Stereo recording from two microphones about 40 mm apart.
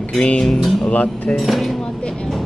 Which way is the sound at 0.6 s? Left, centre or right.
Centre.